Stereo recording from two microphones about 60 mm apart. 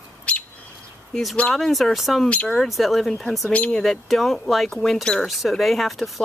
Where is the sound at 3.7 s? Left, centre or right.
Centre.